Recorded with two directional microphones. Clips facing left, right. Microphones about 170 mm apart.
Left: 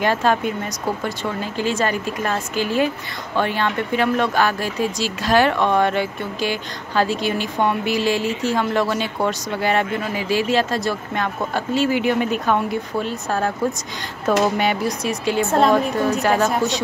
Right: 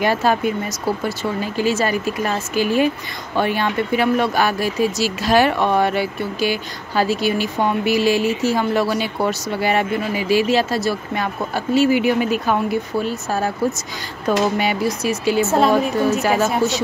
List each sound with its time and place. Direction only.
0.0 s speech: 10° right (ahead or behind)